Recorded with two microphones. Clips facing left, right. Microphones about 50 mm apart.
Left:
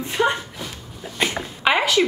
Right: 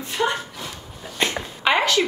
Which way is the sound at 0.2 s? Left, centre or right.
Centre.